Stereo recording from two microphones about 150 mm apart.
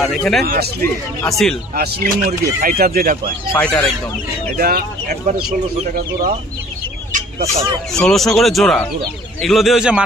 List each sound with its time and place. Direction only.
0.0 s speech: 5° left (ahead or behind)
0.4 s speech: 90° right
1.2 s speech: 5° left (ahead or behind)
1.8 s speech: 75° right (ahead or behind)
3.5 s speech: 10° left (ahead or behind)
4.6 s speech: 75° right (ahead or behind)
7.1 s a sound: 60° right (ahead or behind)
7.9 s speech: 5° left (ahead or behind)